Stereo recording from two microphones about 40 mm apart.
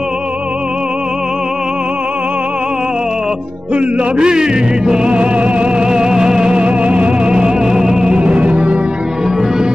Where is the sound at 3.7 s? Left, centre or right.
Right.